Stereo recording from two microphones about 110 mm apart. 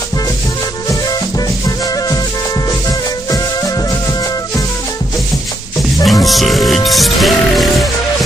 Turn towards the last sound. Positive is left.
turn(degrees=0)  # may be behind; listen again after turning